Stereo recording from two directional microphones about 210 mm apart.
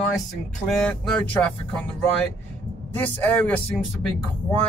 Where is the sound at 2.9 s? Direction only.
10° left (ahead or behind).